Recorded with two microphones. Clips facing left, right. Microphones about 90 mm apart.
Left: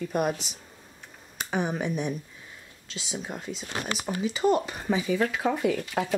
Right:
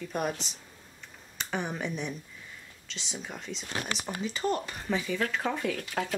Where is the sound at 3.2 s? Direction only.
10° left (ahead or behind).